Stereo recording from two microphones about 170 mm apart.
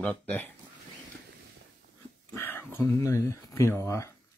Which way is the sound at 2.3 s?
15° left (ahead or behind).